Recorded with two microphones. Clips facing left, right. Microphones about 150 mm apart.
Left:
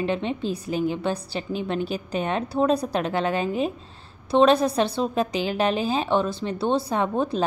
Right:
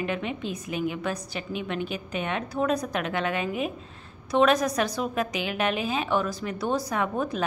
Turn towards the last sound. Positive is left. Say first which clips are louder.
# left 4 dB
turn(degrees=30)  # may be behind; listen again after turning